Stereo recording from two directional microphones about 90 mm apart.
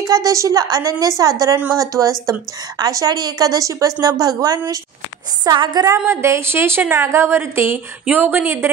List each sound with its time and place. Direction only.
0.0 s a woman's voice: 40° right (ahead or behind)
5.4 s a woman's voice: 55° right (ahead or behind)
5.9 s a woman's voice: 30° right (ahead or behind)